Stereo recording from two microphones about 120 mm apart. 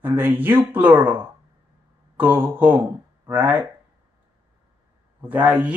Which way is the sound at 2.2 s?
15° right (ahead or behind).